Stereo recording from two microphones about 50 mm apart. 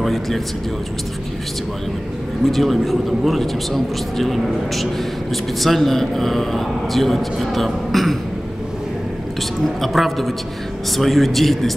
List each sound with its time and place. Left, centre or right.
0.0 s a man's voice: centre
2.4 s a man's voice: centre
9.8 s a man's voice: centre